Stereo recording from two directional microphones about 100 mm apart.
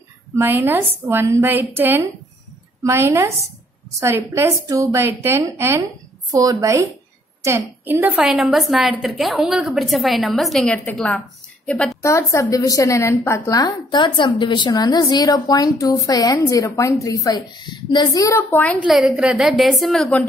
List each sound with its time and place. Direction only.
0.4 s a woman's voice: 20° right (ahead or behind)
6.3 s a woman's voice: 40° right (ahead or behind)
7.4 s a woman's voice: 25° right (ahead or behind)
8.3 s a woman's voice: 5° right (ahead or behind)
12.0 s a woman's voice: 30° left (ahead or behind)
13.5 s a woman's voice: 40° left (ahead or behind)
18.1 s a woman's voice: 35° left (ahead or behind)
18.5 s a woman's voice: 15° left (ahead or behind)
18.8 s a woman's voice: 5° right (ahead or behind)